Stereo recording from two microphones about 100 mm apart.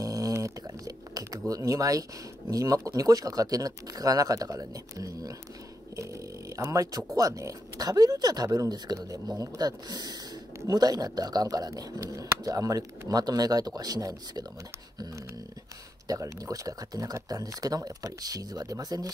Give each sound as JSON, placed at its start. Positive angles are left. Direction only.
{"t": 0.0, "sound": "a sound", "side_deg": -35}
{"t": 1.5, "sound": "speech", "side_deg": -35}
{"t": 16.1, "sound": "speech", "side_deg": -35}